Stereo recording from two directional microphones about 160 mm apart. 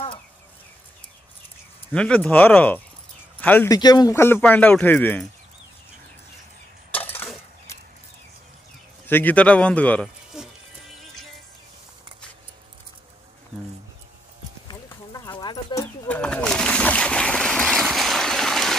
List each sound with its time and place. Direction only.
1.9 s speech: 5° left (ahead or behind)
3.7 s speech: 25° left (ahead or behind)
6.9 s a sound: 10° left (ahead or behind)
9.0 s speech: 10° left (ahead or behind)
14.7 s clip-clop: 25° left (ahead or behind)
16.1 s splash: 10° left (ahead or behind)